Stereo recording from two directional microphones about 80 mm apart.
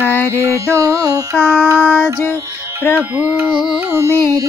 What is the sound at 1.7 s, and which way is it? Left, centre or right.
Music, right.